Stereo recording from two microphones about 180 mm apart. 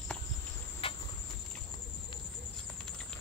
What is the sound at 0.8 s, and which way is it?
Cricket, 30° left (ahead or behind).